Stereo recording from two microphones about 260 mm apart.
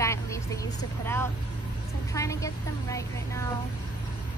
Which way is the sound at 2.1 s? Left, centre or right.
Centre.